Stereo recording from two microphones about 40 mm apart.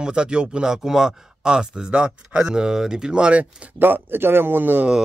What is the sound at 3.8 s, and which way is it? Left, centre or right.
A man's voice, right.